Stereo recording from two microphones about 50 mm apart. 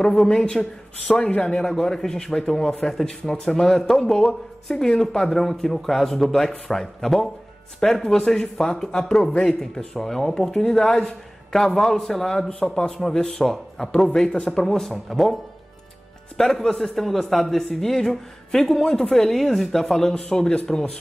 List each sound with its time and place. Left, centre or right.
0.0 s speech: centre
1.3 s speech: left
1.6 s speech: centre
9.3 s speech: left
9.6 s speech: centre
16.3 s speech: centre